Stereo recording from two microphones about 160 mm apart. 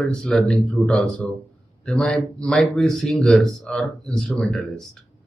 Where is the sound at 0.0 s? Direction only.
5° left (ahead or behind).